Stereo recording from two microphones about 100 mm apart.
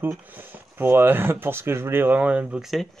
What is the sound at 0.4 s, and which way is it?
Speech, 20° right (ahead or behind).